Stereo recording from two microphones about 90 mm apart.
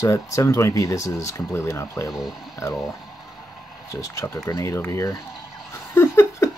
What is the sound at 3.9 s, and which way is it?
Speech, 35° left (ahead or behind).